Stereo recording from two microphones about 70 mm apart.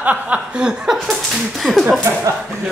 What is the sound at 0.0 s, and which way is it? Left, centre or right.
Chuckle, right.